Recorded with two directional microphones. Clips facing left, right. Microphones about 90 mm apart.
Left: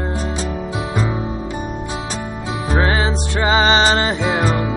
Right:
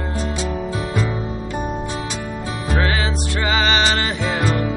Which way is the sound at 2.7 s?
30° left (ahead or behind).